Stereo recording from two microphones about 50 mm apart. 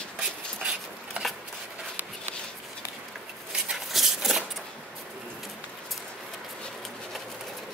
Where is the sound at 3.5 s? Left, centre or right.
Centre.